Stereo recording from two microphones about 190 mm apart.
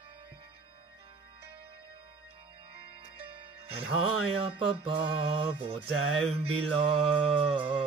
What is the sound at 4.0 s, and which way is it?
Mantra, 30° right (ahead or behind).